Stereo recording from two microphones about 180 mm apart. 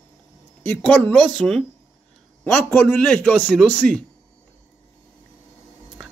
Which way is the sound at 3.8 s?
50° right (ahead or behind).